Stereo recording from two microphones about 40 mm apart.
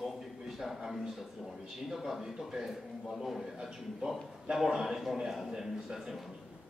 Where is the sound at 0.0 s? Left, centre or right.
Centre.